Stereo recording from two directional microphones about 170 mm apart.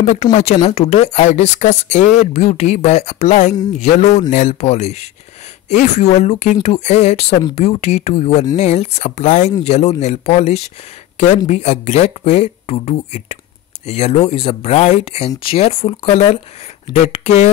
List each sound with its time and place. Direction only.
0.0 s speech: 40° left (ahead or behind)